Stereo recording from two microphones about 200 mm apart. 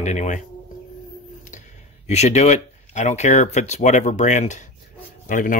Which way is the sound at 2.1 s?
35° left (ahead or behind).